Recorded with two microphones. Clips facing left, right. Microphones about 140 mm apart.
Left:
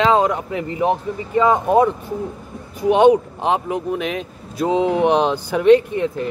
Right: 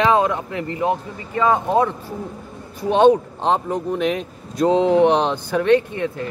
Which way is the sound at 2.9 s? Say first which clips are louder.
Left 1 dB; 15° left (ahead or behind).